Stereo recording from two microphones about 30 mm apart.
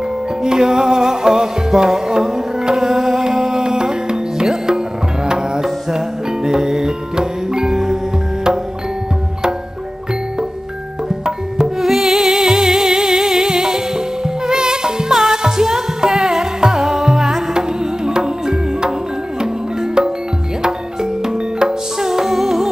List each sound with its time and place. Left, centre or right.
0.4 s music: right
3.6 s music: right
11.2 s tabla: right
11.8 s music: centre
17.6 s music: right
22.0 s music: centre